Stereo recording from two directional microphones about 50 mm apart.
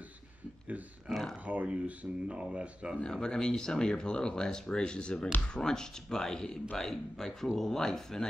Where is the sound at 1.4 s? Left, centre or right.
Right.